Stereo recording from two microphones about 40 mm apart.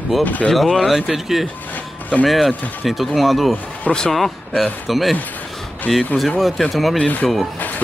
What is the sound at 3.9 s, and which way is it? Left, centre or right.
Speech, left.